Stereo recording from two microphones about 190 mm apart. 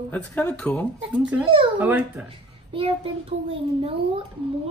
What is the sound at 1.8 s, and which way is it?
Speech, 10° right (ahead or behind).